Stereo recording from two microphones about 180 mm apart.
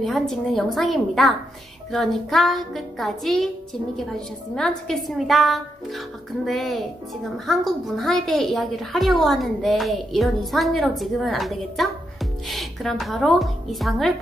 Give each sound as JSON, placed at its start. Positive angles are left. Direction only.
{"t": 0.0, "sound": "a woman's voice", "side_deg": 0}
{"t": 4.6, "sound": "a woman's voice", "side_deg": 5}